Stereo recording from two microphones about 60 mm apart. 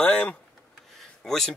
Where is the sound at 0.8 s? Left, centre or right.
Centre.